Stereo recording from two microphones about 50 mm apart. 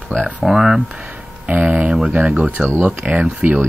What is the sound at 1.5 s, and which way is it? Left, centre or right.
Speech, right.